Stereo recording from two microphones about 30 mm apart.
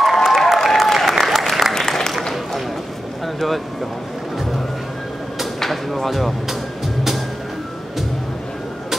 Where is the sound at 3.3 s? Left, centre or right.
Centre.